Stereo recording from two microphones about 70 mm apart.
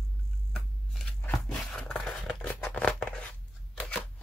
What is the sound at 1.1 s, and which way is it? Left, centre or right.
Scissors, centre.